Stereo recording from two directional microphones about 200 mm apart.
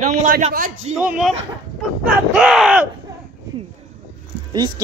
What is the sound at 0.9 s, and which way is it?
Speech, 5° right (ahead or behind).